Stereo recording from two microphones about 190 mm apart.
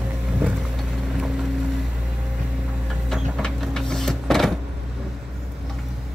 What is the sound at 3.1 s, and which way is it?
Printer, centre (ahead or behind).